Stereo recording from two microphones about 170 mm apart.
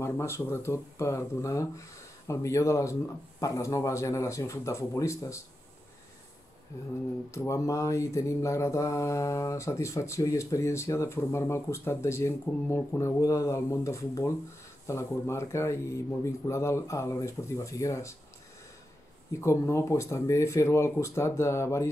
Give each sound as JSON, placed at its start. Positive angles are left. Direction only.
{"t": 0.0, "sound": "mantra", "side_deg": 15}
{"t": 6.7, "sound": "mantra", "side_deg": 15}
{"t": 19.4, "sound": "mantra", "side_deg": 15}